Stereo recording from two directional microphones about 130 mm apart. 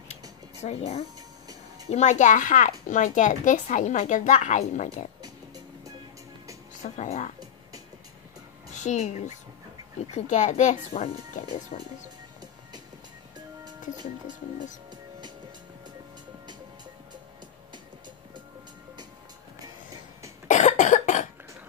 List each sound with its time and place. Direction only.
0.7 s speech: 55° left (ahead or behind)
5.2 s music: 30° right (ahead or behind)
6.7 s speech: 65° left (ahead or behind)
8.7 s a woman's voice: 65° left (ahead or behind)
11.7 s speech: 80° left
13.7 s speech: 35° right (ahead or behind)
20.4 s cough: 70° left (ahead or behind)